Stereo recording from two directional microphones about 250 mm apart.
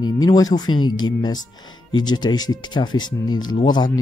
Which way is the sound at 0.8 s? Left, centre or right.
Left.